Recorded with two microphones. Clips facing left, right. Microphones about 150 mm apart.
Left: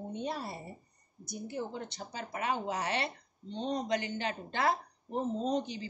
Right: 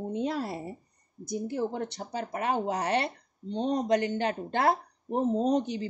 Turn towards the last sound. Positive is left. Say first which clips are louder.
# right 6 dB
turn(degrees=-65)  # may be behind; listen again after turning